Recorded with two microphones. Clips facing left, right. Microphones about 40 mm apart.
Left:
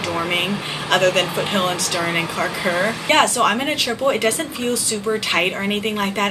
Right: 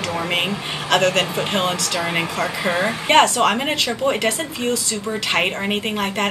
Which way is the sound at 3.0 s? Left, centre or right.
Centre.